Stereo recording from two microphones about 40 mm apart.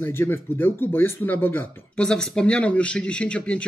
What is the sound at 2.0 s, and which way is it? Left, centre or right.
Speech, centre.